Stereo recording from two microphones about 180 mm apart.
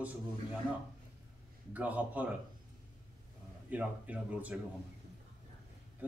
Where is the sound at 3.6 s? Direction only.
10° right (ahead or behind).